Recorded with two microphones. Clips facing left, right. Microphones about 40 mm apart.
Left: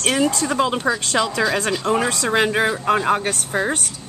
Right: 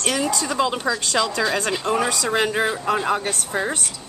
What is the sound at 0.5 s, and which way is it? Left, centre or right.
Speech, centre.